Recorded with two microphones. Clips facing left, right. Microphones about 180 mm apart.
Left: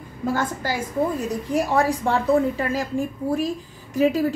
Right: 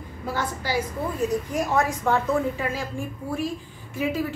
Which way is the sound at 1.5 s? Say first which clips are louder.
Left 3 dB; 30° left (ahead or behind).